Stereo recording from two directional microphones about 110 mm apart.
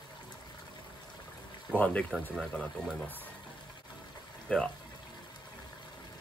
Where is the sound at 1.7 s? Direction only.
10° left (ahead or behind).